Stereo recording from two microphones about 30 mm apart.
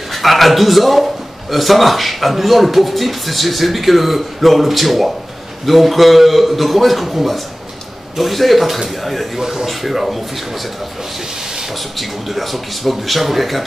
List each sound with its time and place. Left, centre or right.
0.1 s a man's voice: centre
9.4 s speech: centre
9.7 s speech: centre
12.0 s speech: centre